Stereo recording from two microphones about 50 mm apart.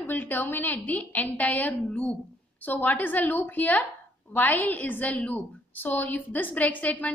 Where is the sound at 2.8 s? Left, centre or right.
Left.